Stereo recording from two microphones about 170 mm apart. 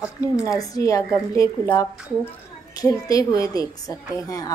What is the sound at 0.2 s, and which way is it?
A woman's voice, 20° left (ahead or behind).